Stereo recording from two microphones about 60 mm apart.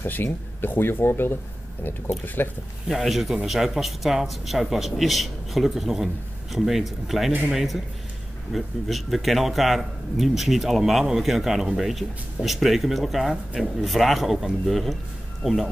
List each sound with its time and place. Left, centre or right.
0.0 s speech: left
2.9 s speech: centre